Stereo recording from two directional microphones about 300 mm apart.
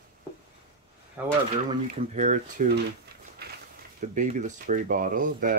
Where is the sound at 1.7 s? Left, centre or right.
Right.